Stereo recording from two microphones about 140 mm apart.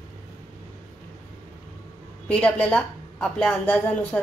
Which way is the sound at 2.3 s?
10° left (ahead or behind).